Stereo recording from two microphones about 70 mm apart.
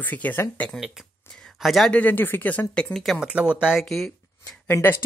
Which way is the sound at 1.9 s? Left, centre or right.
Left.